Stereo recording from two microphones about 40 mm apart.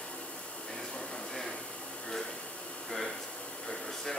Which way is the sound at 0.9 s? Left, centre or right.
Centre.